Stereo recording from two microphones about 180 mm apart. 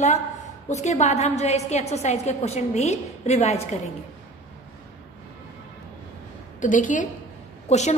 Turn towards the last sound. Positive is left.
turn(degrees=40)  # may be behind; listen again after turning